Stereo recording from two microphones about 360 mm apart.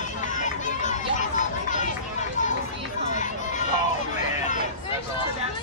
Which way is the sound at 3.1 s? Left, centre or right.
Centre.